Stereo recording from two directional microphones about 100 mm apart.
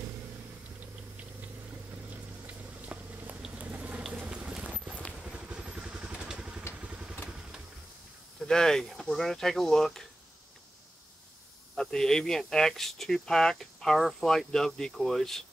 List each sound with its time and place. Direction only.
2.4 s a sound: 15° right (ahead or behind)
3.4 s boiling: 15° right (ahead or behind)
4.1 s a sound: 15° right (ahead or behind)
5.2 s vehicle: 10° right (ahead or behind)
8.5 s speech: 5° left (ahead or behind)
11.7 s speech: 5° left (ahead or behind)